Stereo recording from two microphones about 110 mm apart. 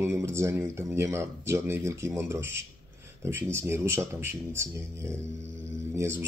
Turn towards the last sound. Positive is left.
turn(degrees=-25)  # may be behind; listen again after turning